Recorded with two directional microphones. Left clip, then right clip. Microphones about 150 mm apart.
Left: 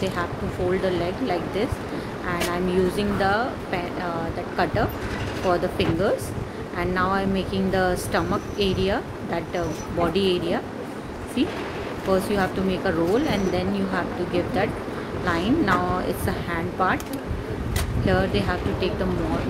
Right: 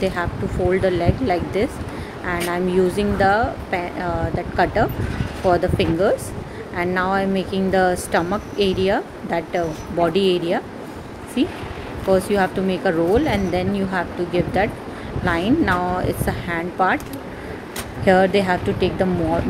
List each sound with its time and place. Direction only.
0.0 s speech: 35° right (ahead or behind)
18.0 s speech: 25° right (ahead or behind)